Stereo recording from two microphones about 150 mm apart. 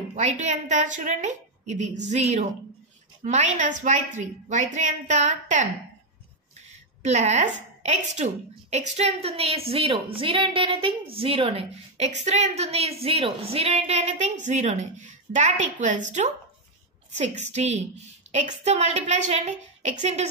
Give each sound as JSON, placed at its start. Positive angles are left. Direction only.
{"t": 0.1, "sound": "a woman's voice", "side_deg": -50}
{"t": 7.0, "sound": "a woman's voice", "side_deg": -50}